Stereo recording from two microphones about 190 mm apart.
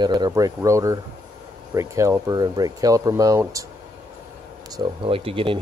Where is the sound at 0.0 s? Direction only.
20° right (ahead or behind).